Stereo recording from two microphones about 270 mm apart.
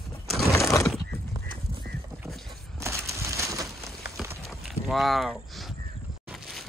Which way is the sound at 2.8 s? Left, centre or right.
Centre.